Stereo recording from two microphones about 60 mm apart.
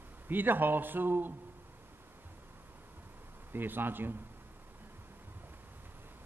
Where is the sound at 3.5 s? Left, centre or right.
Right.